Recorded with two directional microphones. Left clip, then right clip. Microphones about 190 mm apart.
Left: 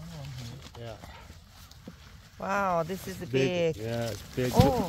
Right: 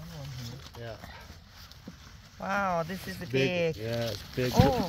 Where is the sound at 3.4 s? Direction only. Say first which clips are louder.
Left 1 dB; 35° left (ahead or behind).